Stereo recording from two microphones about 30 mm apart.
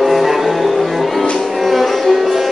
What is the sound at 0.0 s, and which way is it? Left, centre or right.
Music, centre.